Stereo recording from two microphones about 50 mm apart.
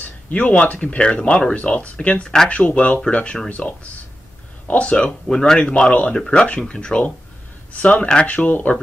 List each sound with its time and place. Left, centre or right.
0.0 s speech: left
8.4 s speech: left